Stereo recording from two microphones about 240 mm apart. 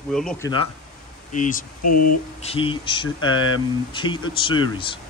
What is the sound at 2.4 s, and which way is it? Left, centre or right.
Speech, left.